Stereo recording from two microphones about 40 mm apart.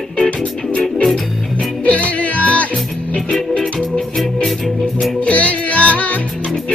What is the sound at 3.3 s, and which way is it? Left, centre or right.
Music, centre.